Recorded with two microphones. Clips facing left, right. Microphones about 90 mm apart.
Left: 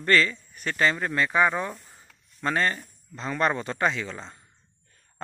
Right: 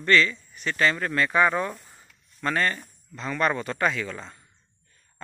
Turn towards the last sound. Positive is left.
turn(degrees=25)  # may be behind; listen again after turning